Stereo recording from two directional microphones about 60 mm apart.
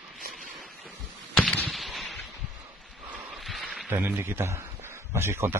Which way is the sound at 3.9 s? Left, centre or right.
Right.